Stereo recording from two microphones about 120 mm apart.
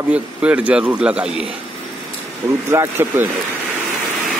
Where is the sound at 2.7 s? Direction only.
20° right (ahead or behind).